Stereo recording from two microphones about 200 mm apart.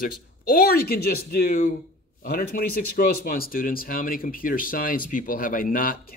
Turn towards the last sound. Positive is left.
turn(degrees=45)  # may be behind; listen again after turning